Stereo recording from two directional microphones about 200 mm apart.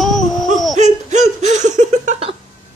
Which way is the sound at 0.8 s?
35° right (ahead or behind).